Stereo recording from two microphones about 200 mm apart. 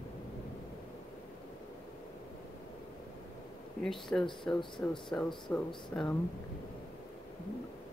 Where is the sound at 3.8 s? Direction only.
Centre (ahead or behind).